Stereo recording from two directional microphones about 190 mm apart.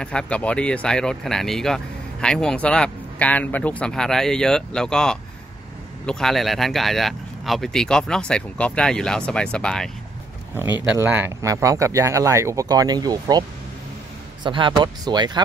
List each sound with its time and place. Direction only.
0.0 s speech: 5° left (ahead or behind)
11.0 s speech: 10° right (ahead or behind)